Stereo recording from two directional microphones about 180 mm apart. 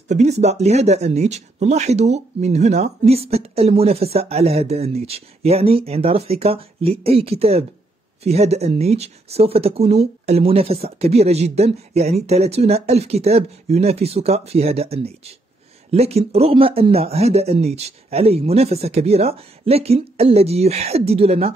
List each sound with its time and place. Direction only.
0.1 s speech: 40° right (ahead or behind)